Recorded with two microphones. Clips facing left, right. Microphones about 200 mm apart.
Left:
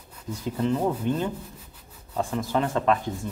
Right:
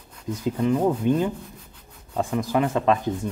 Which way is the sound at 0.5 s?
10° right (ahead or behind).